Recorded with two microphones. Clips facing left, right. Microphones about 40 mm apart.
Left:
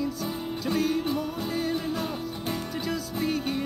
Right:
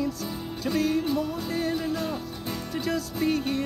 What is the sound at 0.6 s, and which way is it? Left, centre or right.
Music, centre.